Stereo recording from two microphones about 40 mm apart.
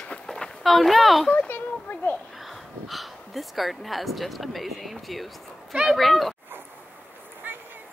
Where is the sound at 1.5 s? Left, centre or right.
Left.